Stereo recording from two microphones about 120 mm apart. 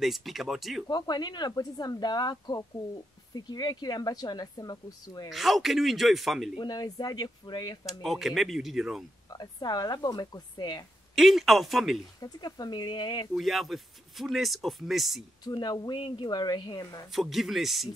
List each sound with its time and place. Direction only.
0.0 s speech: centre (ahead or behind)
0.8 s speech: 35° left (ahead or behind)
5.3 s speech: centre (ahead or behind)
6.6 s speech: 35° left (ahead or behind)
8.0 s speech: centre (ahead or behind)
9.3 s speech: 35° left (ahead or behind)
11.1 s speech: centre (ahead or behind)
12.2 s speech: 35° left (ahead or behind)
13.3 s speech: centre (ahead or behind)
15.4 s speech: 35° left (ahead or behind)
17.1 s speech: centre (ahead or behind)